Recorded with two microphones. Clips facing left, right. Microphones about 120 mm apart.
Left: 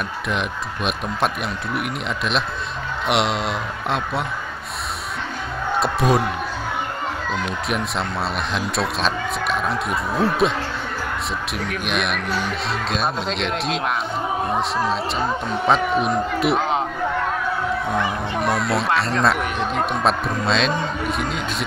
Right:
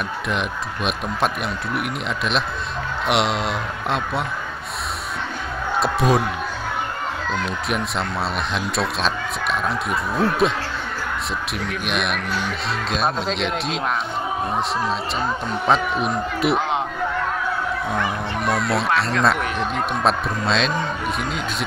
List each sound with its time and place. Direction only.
0.3 s speech: centre (ahead or behind)
5.8 s a man's voice: centre (ahead or behind)
7.4 s speech: centre (ahead or behind)
11.5 s speech: centre (ahead or behind)
17.9 s speech: centre (ahead or behind)